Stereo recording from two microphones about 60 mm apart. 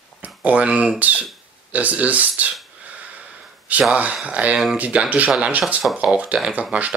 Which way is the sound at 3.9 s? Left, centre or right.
Centre.